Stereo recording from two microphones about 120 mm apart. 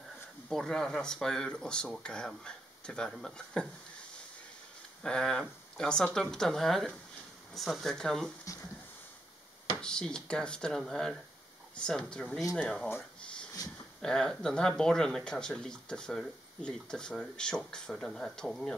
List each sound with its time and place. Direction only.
0.5 s speech: 5° left (ahead or behind)
5.0 s speech: 5° left (ahead or behind)
9.8 s speech: 5° left (ahead or behind)
13.6 s speech: 30° left (ahead or behind)
14.0 s speech: 5° left (ahead or behind)